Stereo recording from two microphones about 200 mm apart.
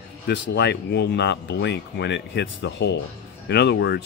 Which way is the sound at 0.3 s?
55° left (ahead or behind).